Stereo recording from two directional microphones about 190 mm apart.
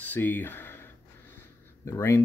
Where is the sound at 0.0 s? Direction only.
10° left (ahead or behind).